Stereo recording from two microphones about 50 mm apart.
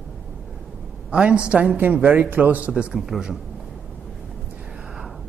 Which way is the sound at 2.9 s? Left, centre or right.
Centre.